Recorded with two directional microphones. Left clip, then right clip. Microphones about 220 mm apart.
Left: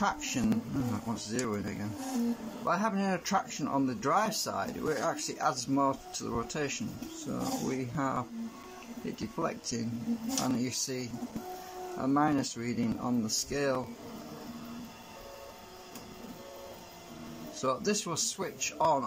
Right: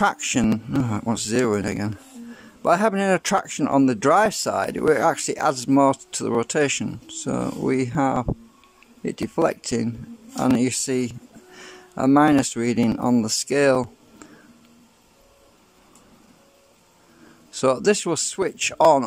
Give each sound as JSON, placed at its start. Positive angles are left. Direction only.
{"t": 0.0, "sound": "speech", "side_deg": -45}
{"t": 17.6, "sound": "speech", "side_deg": -40}